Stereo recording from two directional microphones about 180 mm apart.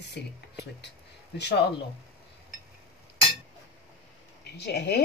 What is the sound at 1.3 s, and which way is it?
Speech, 70° left (ahead or behind).